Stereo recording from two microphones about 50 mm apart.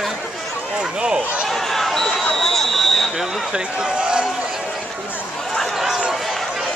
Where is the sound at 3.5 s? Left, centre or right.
Centre.